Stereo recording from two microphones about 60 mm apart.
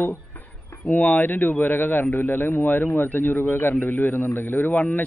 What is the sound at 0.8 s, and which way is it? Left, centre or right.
A man's voice, left.